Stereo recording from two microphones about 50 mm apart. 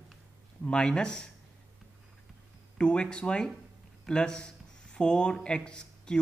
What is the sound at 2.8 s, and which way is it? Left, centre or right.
A man's voice, centre.